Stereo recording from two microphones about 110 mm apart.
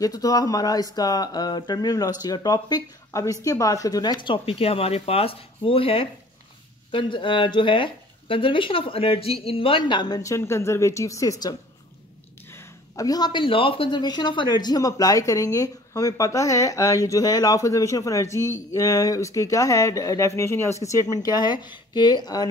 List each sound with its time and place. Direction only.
0.0 s speech: 35° left (ahead or behind)
12.5 s speech: 30° left (ahead or behind)